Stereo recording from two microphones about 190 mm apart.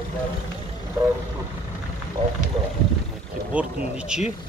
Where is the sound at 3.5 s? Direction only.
5° right (ahead or behind).